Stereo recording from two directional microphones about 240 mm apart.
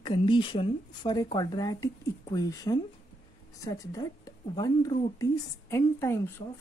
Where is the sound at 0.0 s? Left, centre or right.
Left.